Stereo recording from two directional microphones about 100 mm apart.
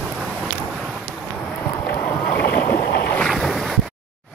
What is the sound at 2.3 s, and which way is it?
Boat, 20° left (ahead or behind).